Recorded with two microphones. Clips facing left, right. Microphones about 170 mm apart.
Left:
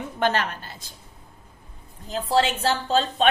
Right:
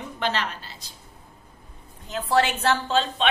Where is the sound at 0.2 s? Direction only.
50° left (ahead or behind).